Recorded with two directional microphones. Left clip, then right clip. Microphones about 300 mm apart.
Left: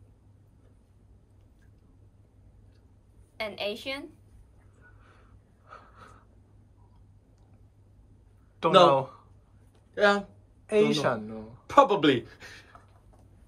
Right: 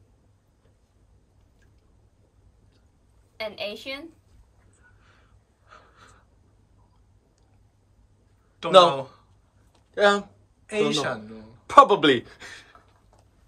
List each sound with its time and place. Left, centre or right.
3.3 s a woman's voice: centre
5.7 s gasp: centre
8.8 s speech: centre
9.9 s speech: centre
10.7 s speech: centre
11.6 s a sound: right